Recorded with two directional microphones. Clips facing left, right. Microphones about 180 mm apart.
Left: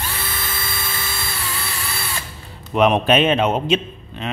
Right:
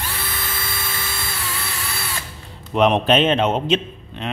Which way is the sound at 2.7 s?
10° left (ahead or behind).